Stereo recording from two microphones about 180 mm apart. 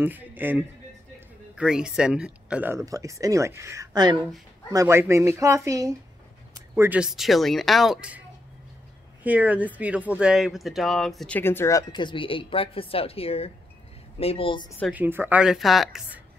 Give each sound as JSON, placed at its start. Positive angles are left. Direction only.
{"t": 0.0, "sound": "speech", "side_deg": -10}
{"t": 9.2, "sound": "a woman's voice", "side_deg": -10}
{"t": 14.9, "sound": "speech", "side_deg": -10}